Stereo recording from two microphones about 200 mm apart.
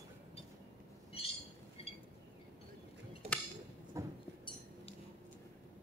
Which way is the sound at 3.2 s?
30° right (ahead or behind).